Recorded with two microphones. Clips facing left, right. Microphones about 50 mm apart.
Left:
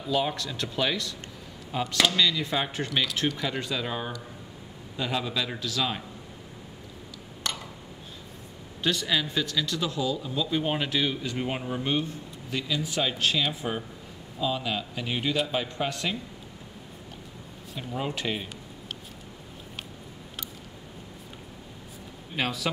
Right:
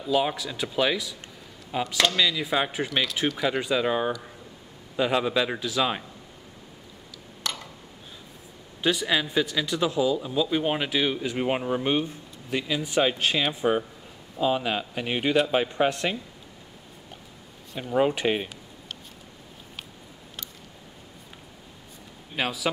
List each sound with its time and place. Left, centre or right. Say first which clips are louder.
0.0 s a man's voice: right 3 dB; centre
7.4 s a sound: even; centre
8.8 s a man's voice: right 3 dB; centre
17.7 s a man's voice: right 9 dB; right
22.3 s a man's voice: right 1 dB; centre